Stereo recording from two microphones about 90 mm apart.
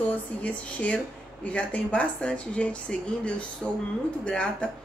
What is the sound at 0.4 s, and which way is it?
A woman's voice, 15° left (ahead or behind).